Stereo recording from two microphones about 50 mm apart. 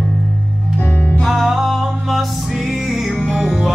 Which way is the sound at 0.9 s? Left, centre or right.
Left.